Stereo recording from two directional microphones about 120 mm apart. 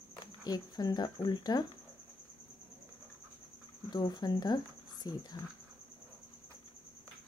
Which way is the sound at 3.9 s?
35° left (ahead or behind).